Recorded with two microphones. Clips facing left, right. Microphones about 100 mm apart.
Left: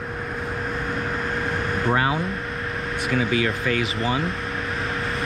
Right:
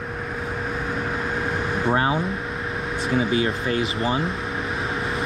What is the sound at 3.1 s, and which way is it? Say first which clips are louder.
Speech: right 1 dB; 20° right (ahead or behind).